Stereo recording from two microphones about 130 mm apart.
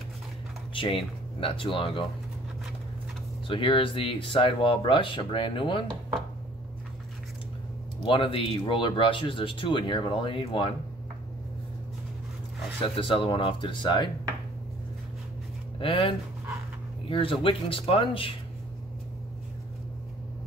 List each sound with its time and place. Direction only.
0.7 s speech: 45° left (ahead or behind)
3.4 s speech: 40° left (ahead or behind)
8.0 s speech: 45° left (ahead or behind)
12.9 s speech: 45° left (ahead or behind)
15.8 s speech: 45° left (ahead or behind)